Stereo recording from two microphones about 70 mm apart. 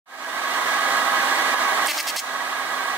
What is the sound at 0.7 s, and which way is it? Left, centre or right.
Vehicle, right.